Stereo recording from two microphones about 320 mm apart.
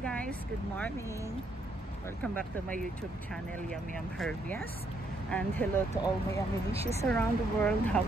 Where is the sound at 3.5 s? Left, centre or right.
Centre.